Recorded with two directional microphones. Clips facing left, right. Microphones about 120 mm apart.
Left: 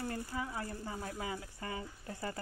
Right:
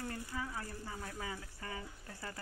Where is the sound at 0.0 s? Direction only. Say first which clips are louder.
Left 3 dB; 30° left (ahead or behind).